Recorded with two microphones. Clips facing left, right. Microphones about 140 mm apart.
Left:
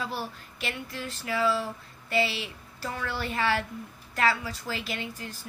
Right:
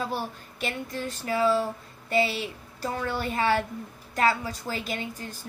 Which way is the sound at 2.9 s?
35° right (ahead or behind).